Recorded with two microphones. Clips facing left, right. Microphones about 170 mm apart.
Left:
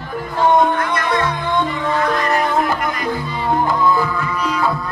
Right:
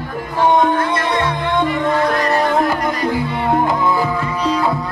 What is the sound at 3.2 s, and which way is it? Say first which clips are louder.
Music: right 2 dB; 60° right (ahead or behind).